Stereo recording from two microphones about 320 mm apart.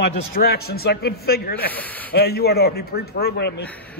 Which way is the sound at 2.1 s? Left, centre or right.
Left.